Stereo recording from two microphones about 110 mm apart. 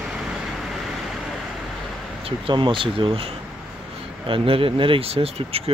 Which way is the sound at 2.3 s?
50° right (ahead or behind).